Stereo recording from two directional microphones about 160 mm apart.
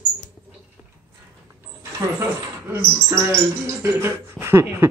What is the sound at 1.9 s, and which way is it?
Speech, 15° right (ahead or behind).